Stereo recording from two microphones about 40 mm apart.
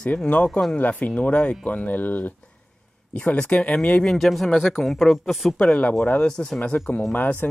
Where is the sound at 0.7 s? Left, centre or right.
Left.